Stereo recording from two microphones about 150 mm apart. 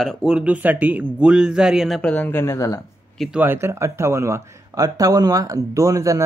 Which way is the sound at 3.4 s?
15° right (ahead or behind).